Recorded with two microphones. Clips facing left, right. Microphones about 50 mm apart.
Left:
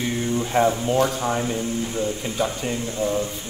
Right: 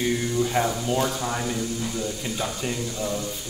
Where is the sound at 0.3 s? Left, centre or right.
Centre.